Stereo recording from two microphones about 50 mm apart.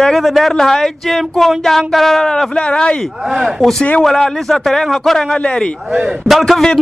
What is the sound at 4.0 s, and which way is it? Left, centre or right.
A man's voice, centre.